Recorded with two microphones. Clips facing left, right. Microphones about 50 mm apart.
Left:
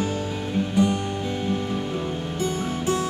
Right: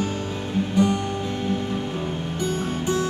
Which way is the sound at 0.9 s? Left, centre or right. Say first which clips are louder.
Right 1 dB; centre.